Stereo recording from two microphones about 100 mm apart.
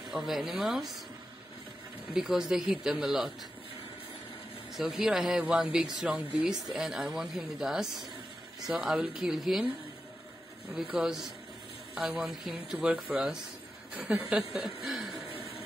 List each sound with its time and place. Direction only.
0.1 s speech: 5° right (ahead or behind)
2.1 s speech: 5° right (ahead or behind)
4.7 s speech: 5° right (ahead or behind)
10.9 s speech: 5° right (ahead or behind)
14.9 s a sound: centre (ahead or behind)